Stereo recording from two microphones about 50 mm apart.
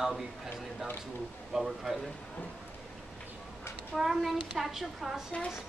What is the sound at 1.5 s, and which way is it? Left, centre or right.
Speech, centre.